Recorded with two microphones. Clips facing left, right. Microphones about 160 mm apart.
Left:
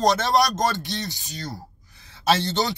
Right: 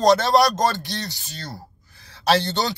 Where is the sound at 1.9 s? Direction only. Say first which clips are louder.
Right 2 dB; 20° left (ahead or behind).